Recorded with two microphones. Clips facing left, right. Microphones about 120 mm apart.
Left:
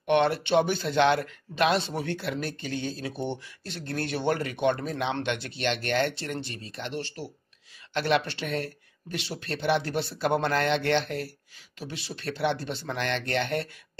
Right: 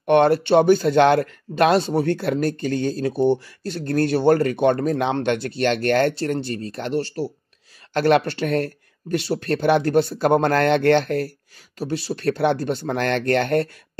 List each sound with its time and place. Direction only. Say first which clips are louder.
0.0 s speech: right 7 dB; 45° right (ahead or behind)